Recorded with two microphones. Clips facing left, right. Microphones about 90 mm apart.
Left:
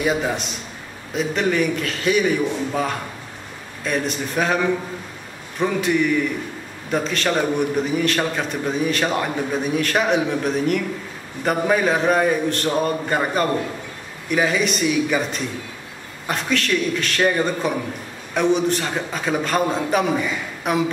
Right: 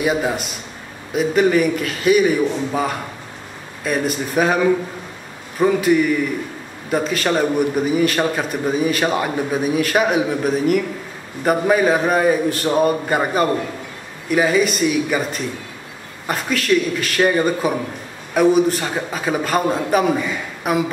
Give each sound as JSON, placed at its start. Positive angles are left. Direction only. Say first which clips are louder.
{"t": 0.0, "sound": "a man's voice", "louder": "right 2 dB", "side_deg": -5}
{"t": 5.6, "sound": "a man's voice", "louder": "right 4 dB", "side_deg": -5}